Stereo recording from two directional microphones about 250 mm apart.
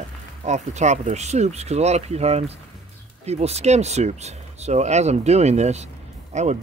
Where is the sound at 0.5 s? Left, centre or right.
Right.